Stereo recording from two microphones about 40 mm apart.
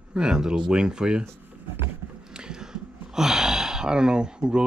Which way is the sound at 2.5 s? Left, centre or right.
Centre.